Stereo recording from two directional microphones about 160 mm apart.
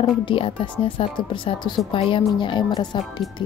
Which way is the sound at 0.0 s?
35° left (ahead or behind).